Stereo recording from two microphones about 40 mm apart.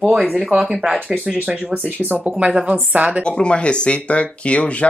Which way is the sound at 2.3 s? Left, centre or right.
Right.